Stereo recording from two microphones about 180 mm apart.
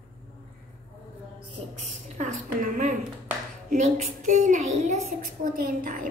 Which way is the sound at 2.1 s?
45° right (ahead or behind).